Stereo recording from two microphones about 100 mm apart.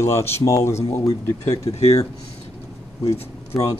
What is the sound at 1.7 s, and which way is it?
Speech, 90° left.